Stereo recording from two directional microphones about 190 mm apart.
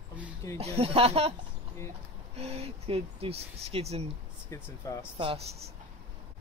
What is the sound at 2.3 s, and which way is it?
Speech, 35° right (ahead or behind).